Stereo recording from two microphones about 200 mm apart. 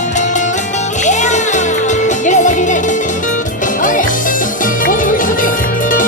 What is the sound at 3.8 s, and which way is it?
Music, 40° left (ahead or behind).